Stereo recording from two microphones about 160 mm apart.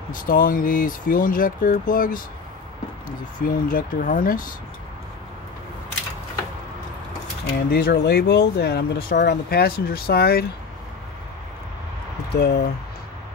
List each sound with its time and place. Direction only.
0.1 s speech: 60° left (ahead or behind)
7.7 s speech: 90° left; by 10.4 s 75° left (ahead or behind)
12.3 s speech: 90° left